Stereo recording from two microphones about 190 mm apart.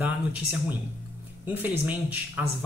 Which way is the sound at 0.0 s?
10° right (ahead or behind).